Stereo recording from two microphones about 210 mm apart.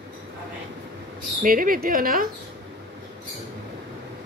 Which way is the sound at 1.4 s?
40° right (ahead or behind).